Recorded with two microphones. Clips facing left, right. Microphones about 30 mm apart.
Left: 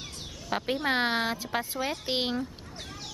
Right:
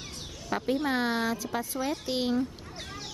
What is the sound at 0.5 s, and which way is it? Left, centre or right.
Speech, left.